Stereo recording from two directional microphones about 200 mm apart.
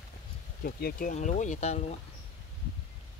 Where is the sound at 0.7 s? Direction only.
50° left (ahead or behind); by 2.0 s 30° left (ahead or behind).